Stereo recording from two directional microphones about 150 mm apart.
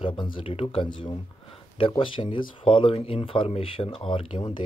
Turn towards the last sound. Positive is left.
turn(degrees=35)  # may be behind; listen again after turning